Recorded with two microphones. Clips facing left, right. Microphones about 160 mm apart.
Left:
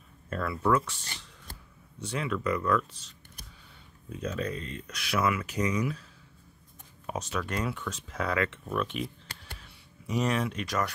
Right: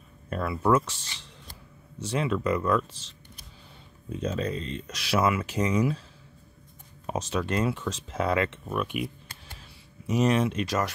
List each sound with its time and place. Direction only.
0.3 s speech: 20° right (ahead or behind)
1.0 s a sound: 50° left (ahead or behind)
2.0 s speech: 25° right (ahead or behind)
4.1 s speech: 25° right (ahead or behind)
7.1 s speech: 25° right (ahead or behind)